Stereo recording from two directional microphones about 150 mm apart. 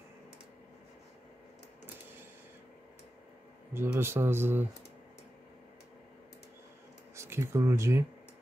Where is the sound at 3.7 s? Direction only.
15° right (ahead or behind).